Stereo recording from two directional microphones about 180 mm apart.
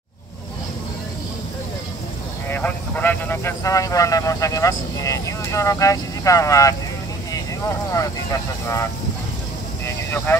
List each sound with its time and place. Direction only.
2.5 s speech: 10° left (ahead or behind)
7.9 s speech: 15° left (ahead or behind)
9.8 s vehicle: 10° left (ahead or behind)